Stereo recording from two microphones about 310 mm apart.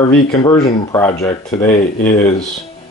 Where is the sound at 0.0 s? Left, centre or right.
Centre.